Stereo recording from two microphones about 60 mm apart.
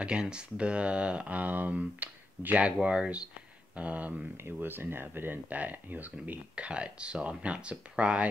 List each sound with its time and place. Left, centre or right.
0.0 s speech: centre
4.4 s speech: right; by 8.3 s centre